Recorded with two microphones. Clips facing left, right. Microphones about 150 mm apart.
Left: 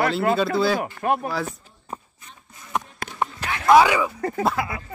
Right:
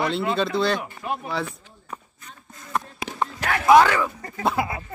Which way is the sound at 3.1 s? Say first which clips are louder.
Right 5 dB; 75° right (ahead or behind).